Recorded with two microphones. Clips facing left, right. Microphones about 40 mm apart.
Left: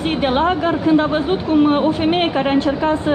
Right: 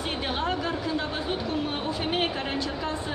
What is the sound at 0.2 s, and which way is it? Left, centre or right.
Speech, left.